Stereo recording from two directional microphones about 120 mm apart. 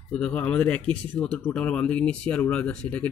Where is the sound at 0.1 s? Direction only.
10° left (ahead or behind).